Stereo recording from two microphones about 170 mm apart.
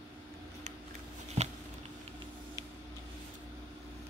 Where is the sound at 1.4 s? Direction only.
40° right (ahead or behind).